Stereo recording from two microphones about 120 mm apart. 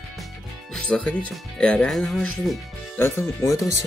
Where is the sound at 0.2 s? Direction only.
5° left (ahead or behind).